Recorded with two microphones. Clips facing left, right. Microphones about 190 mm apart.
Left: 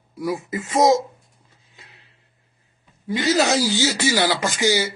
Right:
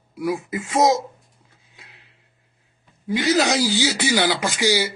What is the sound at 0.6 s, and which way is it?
Speech, 10° right (ahead or behind).